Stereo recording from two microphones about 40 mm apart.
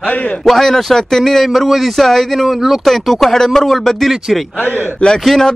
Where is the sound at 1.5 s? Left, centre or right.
Centre.